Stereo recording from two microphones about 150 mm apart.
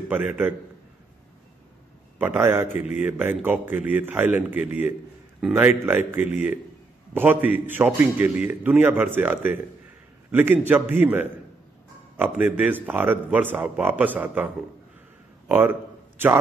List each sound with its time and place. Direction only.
0.1 s a man's voice: 10° right (ahead or behind)
2.1 s a man's voice: 15° right (ahead or behind)